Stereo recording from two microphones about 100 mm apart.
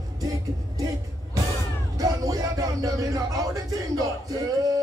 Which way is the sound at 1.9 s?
35° right (ahead or behind).